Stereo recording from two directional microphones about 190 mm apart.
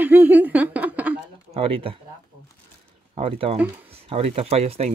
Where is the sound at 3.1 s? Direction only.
30° right (ahead or behind).